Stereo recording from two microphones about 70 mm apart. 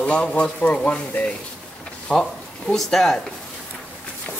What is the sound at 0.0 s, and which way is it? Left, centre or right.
A man's voice, centre.